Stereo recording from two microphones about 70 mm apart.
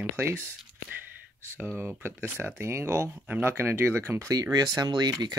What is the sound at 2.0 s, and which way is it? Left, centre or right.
Speech, right.